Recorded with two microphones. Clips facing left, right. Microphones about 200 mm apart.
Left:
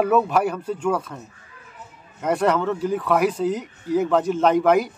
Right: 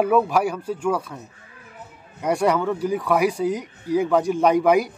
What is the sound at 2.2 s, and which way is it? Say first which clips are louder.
Speech: even; 10° right (ahead or behind).